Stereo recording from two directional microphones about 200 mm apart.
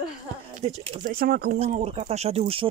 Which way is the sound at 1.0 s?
45° right (ahead or behind).